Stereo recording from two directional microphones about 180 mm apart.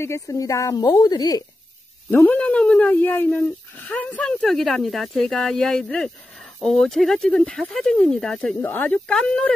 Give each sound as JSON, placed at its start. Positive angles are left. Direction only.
{"t": 0.0, "sound": "a woman's voice", "side_deg": 15}
{"t": 2.0, "sound": "speech", "side_deg": 10}